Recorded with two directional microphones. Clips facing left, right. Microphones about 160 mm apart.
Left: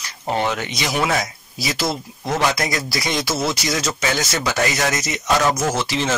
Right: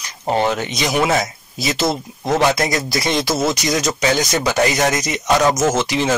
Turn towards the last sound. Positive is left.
turn(degrees=-15)  # may be behind; listen again after turning